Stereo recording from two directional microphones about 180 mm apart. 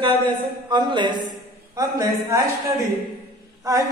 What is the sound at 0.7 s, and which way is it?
A man's voice, 25° right (ahead or behind).